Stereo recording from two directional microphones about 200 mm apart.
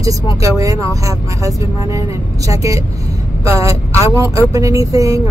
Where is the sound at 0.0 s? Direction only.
15° right (ahead or behind).